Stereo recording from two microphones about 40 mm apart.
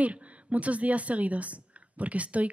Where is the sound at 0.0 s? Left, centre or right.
Right.